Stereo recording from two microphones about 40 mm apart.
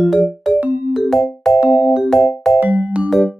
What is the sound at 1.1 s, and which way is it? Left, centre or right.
Music, centre.